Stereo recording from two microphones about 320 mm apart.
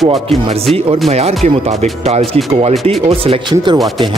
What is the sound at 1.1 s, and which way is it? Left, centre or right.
A man's voice, centre.